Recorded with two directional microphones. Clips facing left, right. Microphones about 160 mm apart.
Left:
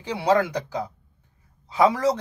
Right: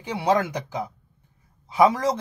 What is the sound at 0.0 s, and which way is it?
Speech, 15° right (ahead or behind).